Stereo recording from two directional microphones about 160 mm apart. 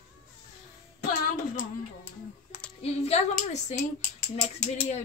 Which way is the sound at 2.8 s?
40° left (ahead or behind).